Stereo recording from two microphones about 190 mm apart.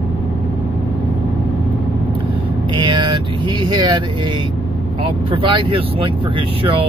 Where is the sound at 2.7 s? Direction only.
25° right (ahead or behind).